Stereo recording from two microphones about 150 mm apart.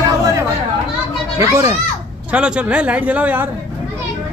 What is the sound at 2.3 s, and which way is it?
Speech, 10° right (ahead or behind).